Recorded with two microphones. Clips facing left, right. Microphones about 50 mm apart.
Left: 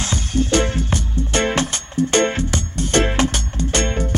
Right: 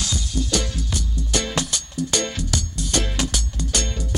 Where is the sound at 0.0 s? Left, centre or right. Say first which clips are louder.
Left 6 dB; left.